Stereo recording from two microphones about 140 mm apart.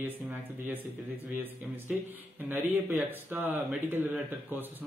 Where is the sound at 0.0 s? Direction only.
15° right (ahead or behind).